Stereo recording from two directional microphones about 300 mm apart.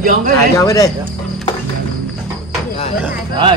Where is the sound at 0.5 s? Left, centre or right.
Centre.